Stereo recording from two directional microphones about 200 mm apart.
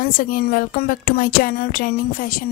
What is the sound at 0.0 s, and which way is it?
A woman's voice, 45° left (ahead or behind).